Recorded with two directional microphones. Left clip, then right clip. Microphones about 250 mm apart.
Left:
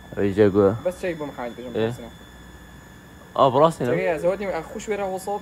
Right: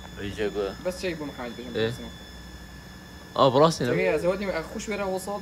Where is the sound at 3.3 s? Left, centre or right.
Centre.